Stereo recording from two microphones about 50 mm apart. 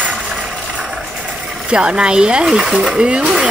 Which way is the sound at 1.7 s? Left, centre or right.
Centre.